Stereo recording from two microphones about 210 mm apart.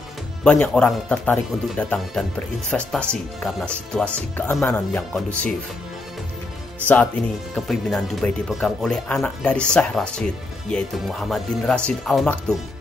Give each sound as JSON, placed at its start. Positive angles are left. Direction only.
{"t": 0.4, "sound": "speech", "side_deg": 5}
{"t": 7.5, "sound": "speech", "side_deg": 0}